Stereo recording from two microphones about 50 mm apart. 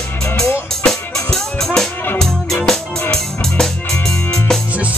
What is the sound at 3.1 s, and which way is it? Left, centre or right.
Music, centre.